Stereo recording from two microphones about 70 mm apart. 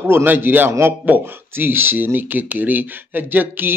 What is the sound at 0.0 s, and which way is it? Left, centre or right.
Speech, right.